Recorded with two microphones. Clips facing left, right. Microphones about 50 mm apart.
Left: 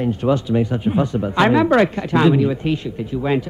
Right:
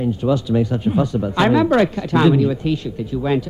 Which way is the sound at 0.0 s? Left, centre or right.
Left.